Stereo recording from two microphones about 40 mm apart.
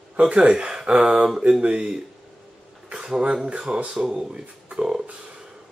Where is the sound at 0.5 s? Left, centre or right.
Centre.